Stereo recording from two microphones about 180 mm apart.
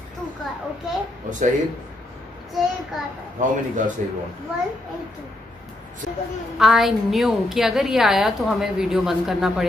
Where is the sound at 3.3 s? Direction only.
45° right (ahead or behind).